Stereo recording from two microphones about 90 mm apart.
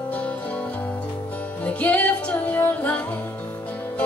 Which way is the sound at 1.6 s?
15° left (ahead or behind).